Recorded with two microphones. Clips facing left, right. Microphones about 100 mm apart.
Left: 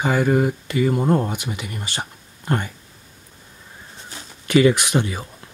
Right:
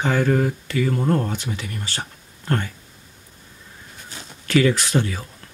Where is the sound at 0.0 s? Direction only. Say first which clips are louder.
Left 1 dB; 10° left (ahead or behind).